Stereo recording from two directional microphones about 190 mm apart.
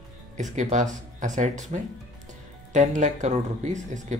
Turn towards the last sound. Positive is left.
turn(degrees=-40)  # may be behind; listen again after turning